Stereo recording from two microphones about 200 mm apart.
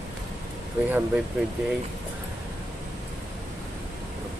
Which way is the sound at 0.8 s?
10° right (ahead or behind).